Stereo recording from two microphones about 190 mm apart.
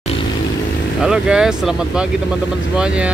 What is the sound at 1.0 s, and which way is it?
Speech, 5° right (ahead or behind).